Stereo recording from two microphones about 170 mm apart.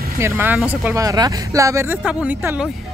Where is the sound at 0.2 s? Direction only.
10° right (ahead or behind).